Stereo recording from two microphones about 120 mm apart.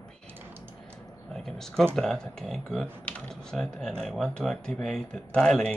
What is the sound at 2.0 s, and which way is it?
Speech, 5° left (ahead or behind).